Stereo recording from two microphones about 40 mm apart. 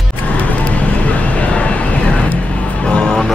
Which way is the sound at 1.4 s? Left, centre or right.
Left.